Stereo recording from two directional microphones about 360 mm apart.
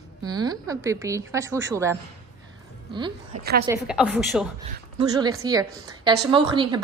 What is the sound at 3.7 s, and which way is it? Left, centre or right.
A woman's voice, centre.